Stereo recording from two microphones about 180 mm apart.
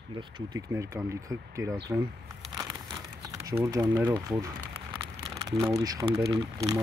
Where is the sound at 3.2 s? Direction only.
20° right (ahead or behind).